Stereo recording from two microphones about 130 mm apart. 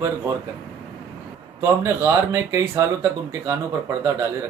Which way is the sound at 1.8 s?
20° right (ahead or behind).